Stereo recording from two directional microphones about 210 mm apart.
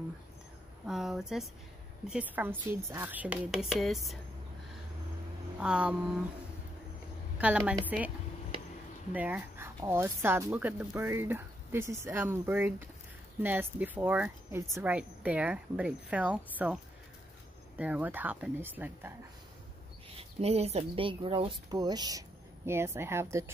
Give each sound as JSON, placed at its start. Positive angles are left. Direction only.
{"t": 0.8, "sound": "a woman's voice", "side_deg": 0}
{"t": 5.6, "sound": "a woman's voice", "side_deg": -5}
{"t": 7.3, "sound": "a woman's voice", "side_deg": -5}
{"t": 9.1, "sound": "speech", "side_deg": -5}
{"t": 20.2, "sound": "speech", "side_deg": -30}